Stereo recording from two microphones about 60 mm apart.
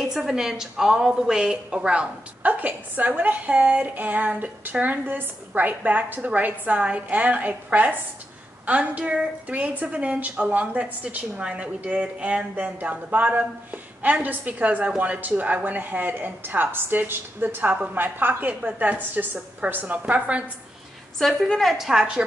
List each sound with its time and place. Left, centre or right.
0.0 s a woman's voice: centre
2.4 s a woman's voice: right
18.5 s a woman's voice: right
21.2 s a woman's voice: centre
21.5 s a woman's voice: centre